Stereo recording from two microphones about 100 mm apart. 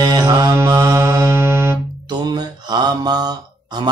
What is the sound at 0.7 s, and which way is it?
Music, 35° right (ahead or behind).